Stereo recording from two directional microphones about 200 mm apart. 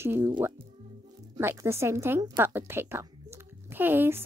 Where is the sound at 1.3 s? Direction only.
10° right (ahead or behind).